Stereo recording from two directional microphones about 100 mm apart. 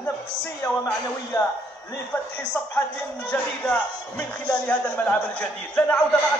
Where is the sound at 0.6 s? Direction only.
30° left (ahead or behind).